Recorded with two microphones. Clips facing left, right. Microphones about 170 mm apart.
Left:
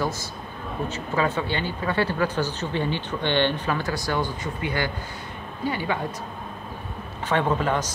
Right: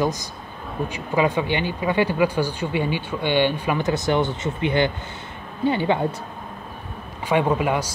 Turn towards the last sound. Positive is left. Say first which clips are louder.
# right 2 dB
turn(degrees=-10)  # may be behind; listen again after turning